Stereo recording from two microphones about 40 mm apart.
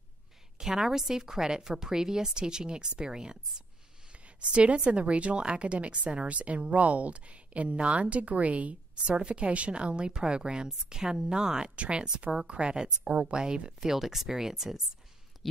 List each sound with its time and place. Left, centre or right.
0.6 s a woman's voice: centre
4.4 s speech: right
11.7 s speech: right
13.7 s a woman's voice: centre